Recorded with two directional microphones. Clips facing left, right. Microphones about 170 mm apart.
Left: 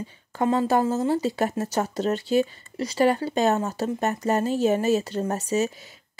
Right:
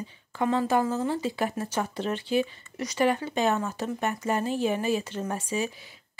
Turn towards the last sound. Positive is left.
turn(degrees=40)  # may be behind; listen again after turning